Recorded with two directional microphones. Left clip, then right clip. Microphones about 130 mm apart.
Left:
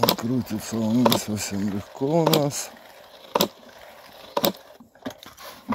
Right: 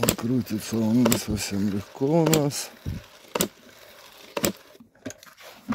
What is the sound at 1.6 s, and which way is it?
Speech, 50° right (ahead or behind).